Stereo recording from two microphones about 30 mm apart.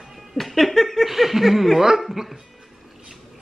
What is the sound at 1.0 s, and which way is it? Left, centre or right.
Speech, centre.